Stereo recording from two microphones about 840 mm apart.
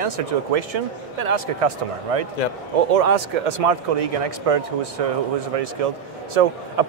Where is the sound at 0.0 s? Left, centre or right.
Right.